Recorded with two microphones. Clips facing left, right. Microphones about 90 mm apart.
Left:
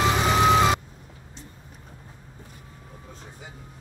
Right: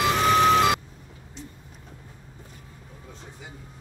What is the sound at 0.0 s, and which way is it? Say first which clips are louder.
Vehicle: right 1 dB; 15° left (ahead or behind).